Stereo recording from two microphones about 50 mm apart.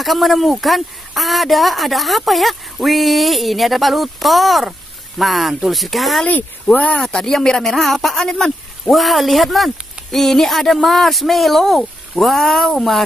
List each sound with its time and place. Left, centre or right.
0.0 s speech: centre
6.2 s speech: left
6.9 s speech: centre